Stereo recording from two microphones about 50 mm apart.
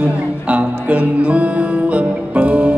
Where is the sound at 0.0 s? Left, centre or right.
Right.